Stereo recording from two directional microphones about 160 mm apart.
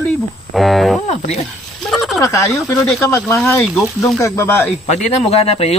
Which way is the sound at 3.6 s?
Centre (ahead or behind).